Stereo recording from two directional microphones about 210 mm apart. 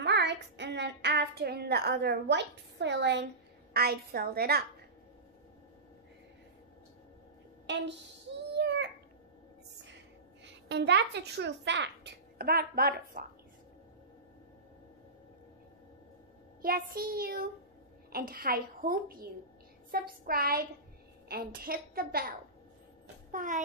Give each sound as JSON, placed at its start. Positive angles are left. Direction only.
{"t": 0.0, "sound": "child singing", "side_deg": -55}
{"t": 3.7, "sound": "a woman's voice", "side_deg": -45}
{"t": 7.7, "sound": "a woman's voice", "side_deg": -60}
{"t": 8.5, "sound": "a sound", "side_deg": -55}
{"t": 10.4, "sound": "a child's voice", "side_deg": -55}
{"t": 16.6, "sound": "a woman's voice", "side_deg": -45}
{"t": 23.3, "sound": "speech", "side_deg": -40}